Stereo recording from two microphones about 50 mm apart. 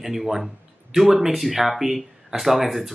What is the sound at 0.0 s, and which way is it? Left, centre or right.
Speech, centre.